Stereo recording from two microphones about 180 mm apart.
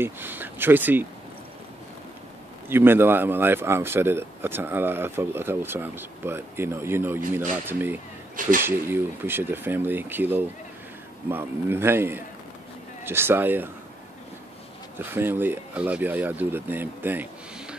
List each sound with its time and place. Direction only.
0.0 s speech: 10° right (ahead or behind)
2.7 s speech: 10° right (ahead or behind)
8.4 s speech: 50° right (ahead or behind)
8.6 s speech: 10° right (ahead or behind)
15.0 s speech: 10° right (ahead or behind)